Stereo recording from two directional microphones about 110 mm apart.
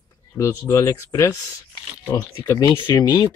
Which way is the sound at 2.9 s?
35° left (ahead or behind).